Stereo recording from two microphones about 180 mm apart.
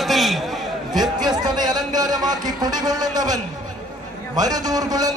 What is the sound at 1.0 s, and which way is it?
A man's voice, 25° right (ahead or behind).